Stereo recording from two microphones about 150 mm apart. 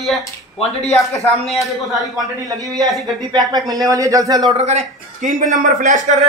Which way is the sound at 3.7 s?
25° right (ahead or behind).